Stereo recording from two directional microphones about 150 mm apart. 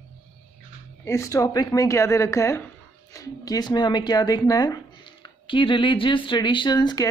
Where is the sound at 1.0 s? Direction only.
20° left (ahead or behind).